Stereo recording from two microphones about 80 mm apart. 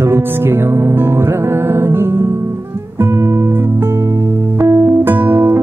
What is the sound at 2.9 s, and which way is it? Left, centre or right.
Music, right.